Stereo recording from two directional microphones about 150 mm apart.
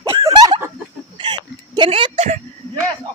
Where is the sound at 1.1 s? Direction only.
30° right (ahead or behind).